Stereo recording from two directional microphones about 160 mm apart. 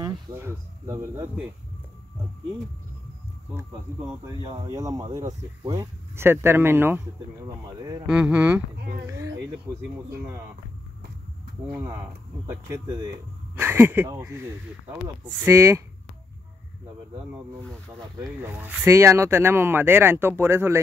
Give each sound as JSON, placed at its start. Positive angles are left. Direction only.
{"t": 0.0, "sound": "insect", "side_deg": -20}
{"t": 4.4, "sound": "speech", "side_deg": -30}
{"t": 4.6, "sound": "speech", "side_deg": -20}
{"t": 7.4, "sound": "speech", "side_deg": -25}
{"t": 8.1, "sound": "speech", "side_deg": -5}
{"t": 11.7, "sound": "speech", "side_deg": -15}
{"t": 15.4, "sound": "speech", "side_deg": -20}
{"t": 18.2, "sound": "speech", "side_deg": -15}